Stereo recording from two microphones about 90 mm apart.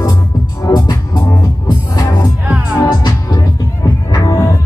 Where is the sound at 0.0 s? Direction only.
45° left (ahead or behind).